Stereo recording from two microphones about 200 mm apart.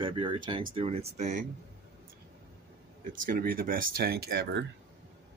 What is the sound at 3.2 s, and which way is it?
Speech, 45° right (ahead or behind).